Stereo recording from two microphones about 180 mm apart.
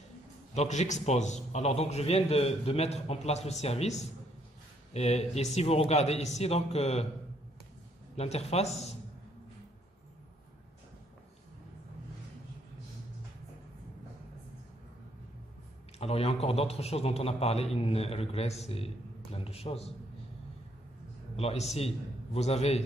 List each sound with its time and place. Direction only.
0.6 s a man's voice: 40° left (ahead or behind)
8.2 s a man's voice: 35° left (ahead or behind)
16.0 s a man's voice: 35° left (ahead or behind)
21.4 s a man's voice: 35° left (ahead or behind)